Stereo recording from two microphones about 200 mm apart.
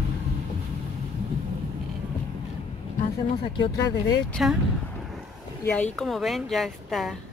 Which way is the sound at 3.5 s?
20° left (ahead or behind).